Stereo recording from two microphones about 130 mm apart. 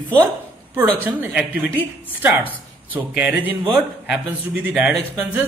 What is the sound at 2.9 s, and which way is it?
Speech, 15° right (ahead or behind).